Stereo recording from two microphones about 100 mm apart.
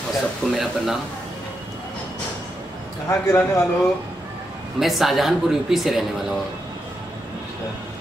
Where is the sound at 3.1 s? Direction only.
30° left (ahead or behind).